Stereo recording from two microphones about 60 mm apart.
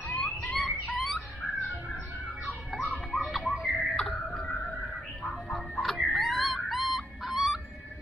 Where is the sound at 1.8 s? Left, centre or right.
Right.